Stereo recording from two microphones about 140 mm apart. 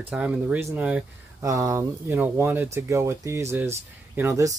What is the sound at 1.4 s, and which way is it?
Speech, 25° right (ahead or behind).